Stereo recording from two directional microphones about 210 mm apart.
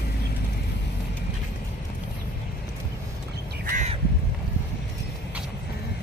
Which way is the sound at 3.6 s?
35° right (ahead or behind).